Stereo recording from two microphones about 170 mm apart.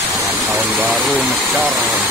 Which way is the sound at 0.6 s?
10° right (ahead or behind).